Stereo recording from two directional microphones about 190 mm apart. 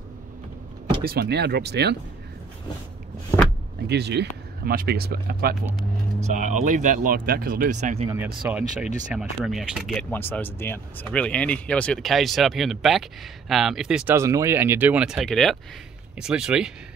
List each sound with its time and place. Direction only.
1.0 s speech: 55° right (ahead or behind)
3.9 s speech: 60° right (ahead or behind)
6.3 s speech: 40° right (ahead or behind)
8.1 s speech: 10° right (ahead or behind)
10.1 s speech: 10° left (ahead or behind)